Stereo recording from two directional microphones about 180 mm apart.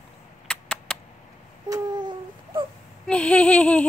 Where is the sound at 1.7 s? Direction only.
25° right (ahead or behind).